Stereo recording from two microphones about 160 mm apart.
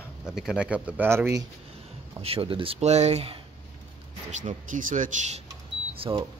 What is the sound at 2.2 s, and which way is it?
Speech, 35° right (ahead or behind).